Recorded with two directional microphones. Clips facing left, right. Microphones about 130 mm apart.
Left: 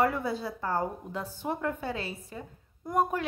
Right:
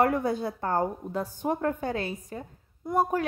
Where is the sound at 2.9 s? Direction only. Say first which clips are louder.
Right 2 dB; 35° right (ahead or behind).